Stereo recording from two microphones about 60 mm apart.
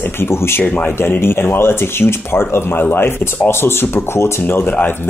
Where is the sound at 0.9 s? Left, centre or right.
Left.